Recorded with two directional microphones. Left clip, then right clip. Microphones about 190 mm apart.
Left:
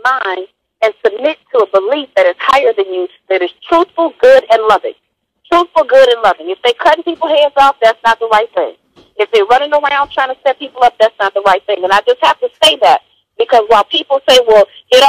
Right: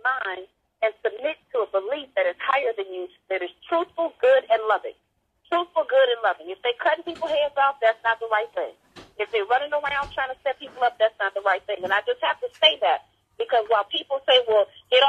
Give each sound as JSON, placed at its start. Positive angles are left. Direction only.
{"t": 0.0, "sound": "speech", "side_deg": 45}